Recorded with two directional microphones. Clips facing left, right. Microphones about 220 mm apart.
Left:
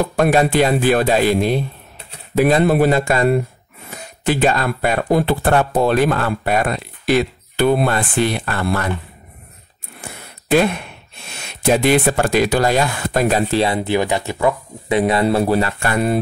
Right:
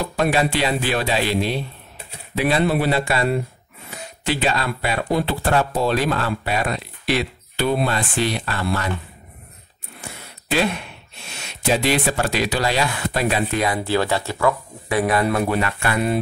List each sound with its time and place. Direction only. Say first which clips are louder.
0.0 s speech: left 5 dB; 50° left (ahead or behind)
10.5 s speech: left 6 dB; 50° left (ahead or behind)
13.6 s speech: left 3 dB; 25° left (ahead or behind); by 16.2 s 45° left (ahead or behind)